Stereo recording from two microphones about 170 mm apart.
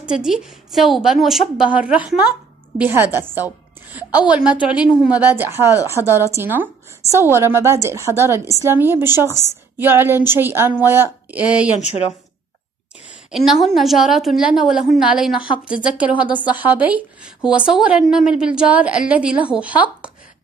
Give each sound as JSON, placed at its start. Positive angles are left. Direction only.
{"t": 0.0, "sound": "a woman's voice", "side_deg": -5}
{"t": 11.8, "sound": "a woman's voice", "side_deg": 40}
{"t": 13.5, "sound": "a woman's voice", "side_deg": 0}